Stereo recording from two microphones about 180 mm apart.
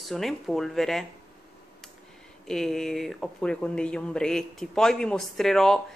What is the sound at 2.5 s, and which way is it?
A woman's voice, 5° left (ahead or behind).